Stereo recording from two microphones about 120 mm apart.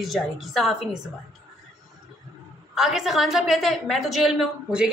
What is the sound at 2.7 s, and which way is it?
A woman's voice, 5° right (ahead or behind).